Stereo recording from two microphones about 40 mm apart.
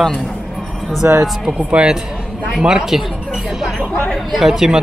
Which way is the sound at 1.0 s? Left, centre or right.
Right.